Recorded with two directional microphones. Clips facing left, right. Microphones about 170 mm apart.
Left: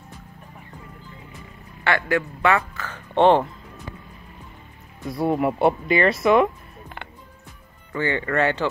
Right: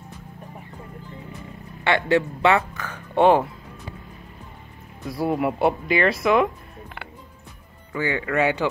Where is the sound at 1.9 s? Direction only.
25° right (ahead or behind); by 3.4 s 10° right (ahead or behind).